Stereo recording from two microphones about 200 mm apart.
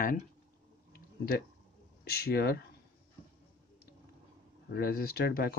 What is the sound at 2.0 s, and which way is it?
Speech, 50° left (ahead or behind).